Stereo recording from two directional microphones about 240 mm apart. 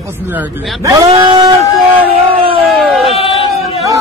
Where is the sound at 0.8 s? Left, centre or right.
Centre.